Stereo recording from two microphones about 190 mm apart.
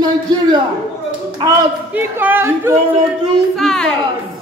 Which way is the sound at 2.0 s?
10° right (ahead or behind).